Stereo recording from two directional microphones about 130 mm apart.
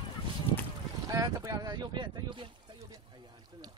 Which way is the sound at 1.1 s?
25° right (ahead or behind).